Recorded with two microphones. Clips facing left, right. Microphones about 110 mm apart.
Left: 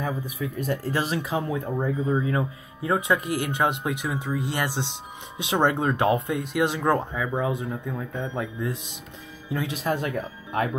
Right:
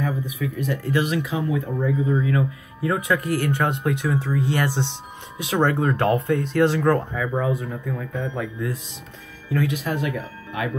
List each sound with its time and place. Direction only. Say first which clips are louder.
0.0 s speech: right 3 dB; 35° left (ahead or behind); by 9.8 s 20° left (ahead or behind)
9.8 s speech: even; 35° left (ahead or behind)